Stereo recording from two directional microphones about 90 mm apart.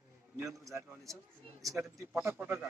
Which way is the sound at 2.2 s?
25° right (ahead or behind).